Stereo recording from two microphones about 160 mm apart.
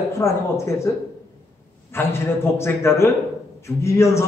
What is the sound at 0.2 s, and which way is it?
Speech, 20° left (ahead or behind).